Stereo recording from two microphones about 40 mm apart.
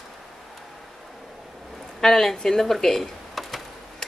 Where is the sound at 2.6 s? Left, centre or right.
Centre.